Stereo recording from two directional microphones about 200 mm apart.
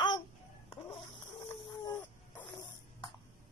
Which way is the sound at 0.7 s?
25° left (ahead or behind).